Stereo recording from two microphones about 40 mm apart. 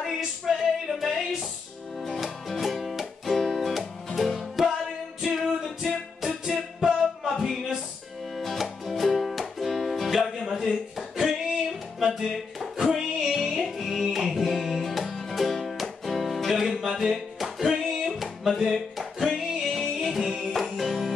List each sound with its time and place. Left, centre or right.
0.0 s music: centre
7.2 s a sound: centre
8.4 s music: centre